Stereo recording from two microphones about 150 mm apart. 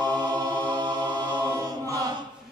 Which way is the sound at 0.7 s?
30° right (ahead or behind).